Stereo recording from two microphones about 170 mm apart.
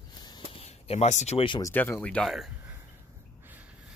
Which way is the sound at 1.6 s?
15° left (ahead or behind).